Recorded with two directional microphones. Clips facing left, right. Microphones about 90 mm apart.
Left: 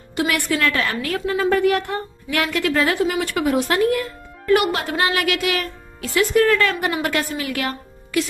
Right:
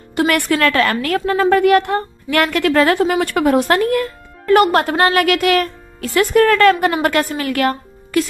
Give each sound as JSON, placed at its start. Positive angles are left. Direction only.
{"t": 0.1, "sound": "a woman's voice", "side_deg": -60}